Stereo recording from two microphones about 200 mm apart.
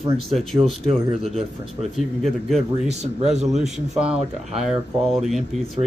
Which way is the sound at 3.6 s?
5° right (ahead or behind).